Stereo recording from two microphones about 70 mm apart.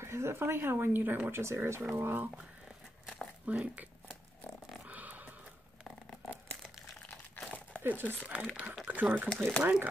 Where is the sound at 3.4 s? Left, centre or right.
Right.